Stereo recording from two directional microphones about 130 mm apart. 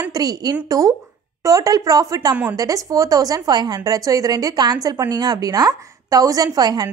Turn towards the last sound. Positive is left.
turn(degrees=-30)  # may be behind; listen again after turning